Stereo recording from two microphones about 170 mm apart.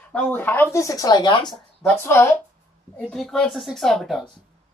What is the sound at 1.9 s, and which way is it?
Speech, 15° left (ahead or behind).